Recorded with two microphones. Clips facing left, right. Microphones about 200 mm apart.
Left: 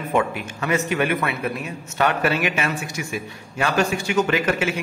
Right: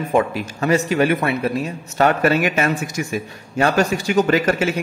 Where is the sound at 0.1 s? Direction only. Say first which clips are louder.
Right 3 dB; 35° right (ahead or behind).